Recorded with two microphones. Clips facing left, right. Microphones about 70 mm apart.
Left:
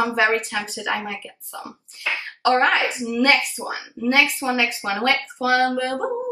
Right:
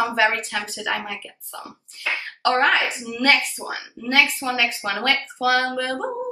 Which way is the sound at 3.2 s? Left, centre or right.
Centre.